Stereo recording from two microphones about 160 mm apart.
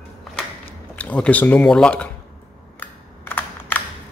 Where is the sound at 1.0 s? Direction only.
10° left (ahead or behind).